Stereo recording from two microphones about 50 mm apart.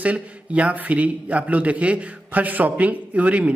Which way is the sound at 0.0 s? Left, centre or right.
Right.